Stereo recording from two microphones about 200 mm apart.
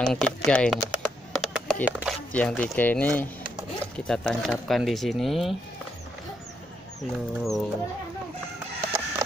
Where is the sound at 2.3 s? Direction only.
5° left (ahead or behind).